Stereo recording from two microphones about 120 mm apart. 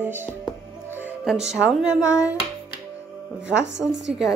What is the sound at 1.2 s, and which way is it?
Speech, 5° right (ahead or behind).